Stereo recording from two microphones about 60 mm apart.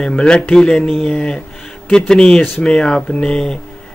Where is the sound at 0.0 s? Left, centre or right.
Centre.